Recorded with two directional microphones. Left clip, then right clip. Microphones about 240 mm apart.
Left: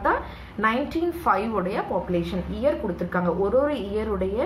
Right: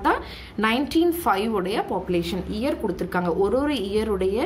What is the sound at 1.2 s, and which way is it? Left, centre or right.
A woman's voice, right.